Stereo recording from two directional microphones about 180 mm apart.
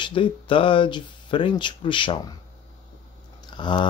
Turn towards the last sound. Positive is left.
turn(degrees=25)  # may be behind; listen again after turning